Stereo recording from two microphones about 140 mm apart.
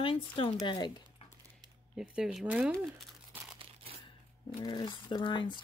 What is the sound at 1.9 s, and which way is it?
Speech, 5° right (ahead or behind).